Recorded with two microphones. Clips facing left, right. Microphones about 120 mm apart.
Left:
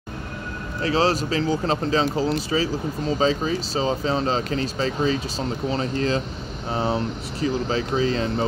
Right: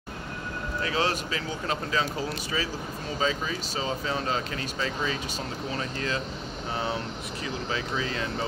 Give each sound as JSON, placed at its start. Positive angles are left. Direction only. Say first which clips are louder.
{"t": 0.8, "sound": "speech", "louder": "left 8 dB", "side_deg": 35}